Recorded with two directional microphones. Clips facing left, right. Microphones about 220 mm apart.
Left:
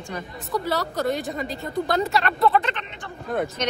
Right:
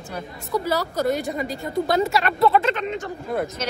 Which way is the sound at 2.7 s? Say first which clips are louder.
Right 10 dB; 40° right (ahead or behind).